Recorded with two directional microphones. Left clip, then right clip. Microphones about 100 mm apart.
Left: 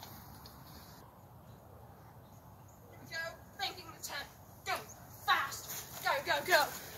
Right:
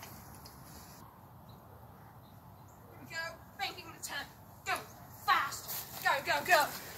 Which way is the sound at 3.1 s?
15° left (ahead or behind).